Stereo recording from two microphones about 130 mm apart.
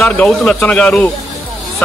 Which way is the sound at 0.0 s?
5° left (ahead or behind).